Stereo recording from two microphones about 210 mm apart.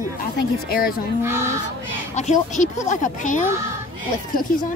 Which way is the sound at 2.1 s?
35° left (ahead or behind).